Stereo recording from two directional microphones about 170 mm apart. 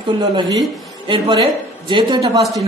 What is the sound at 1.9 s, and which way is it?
Speech, 30° right (ahead or behind).